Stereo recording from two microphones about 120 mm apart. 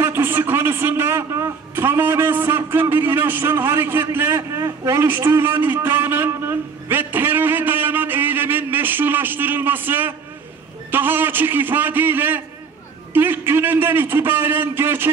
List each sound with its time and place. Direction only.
0.0 s a man's voice: 20° right (ahead or behind)